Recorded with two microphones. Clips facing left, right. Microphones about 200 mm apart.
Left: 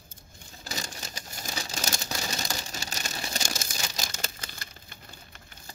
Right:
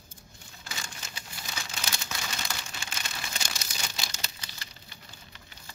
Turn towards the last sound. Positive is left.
turn(degrees=50)  # may be behind; listen again after turning